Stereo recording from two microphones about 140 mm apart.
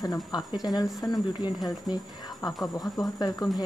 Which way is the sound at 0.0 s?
30° left (ahead or behind).